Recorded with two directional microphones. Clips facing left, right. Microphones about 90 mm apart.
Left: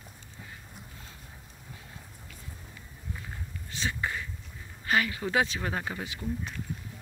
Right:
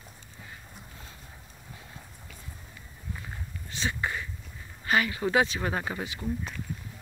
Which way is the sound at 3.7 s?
20° right (ahead or behind).